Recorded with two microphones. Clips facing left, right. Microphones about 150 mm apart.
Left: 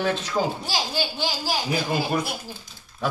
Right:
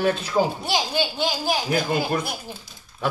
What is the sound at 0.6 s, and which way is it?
Speech, 20° right (ahead or behind).